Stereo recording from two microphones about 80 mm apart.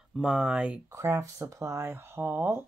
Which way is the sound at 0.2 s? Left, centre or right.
Centre.